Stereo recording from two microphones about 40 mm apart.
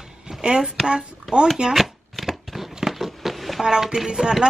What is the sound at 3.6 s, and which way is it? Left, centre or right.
Speech, centre.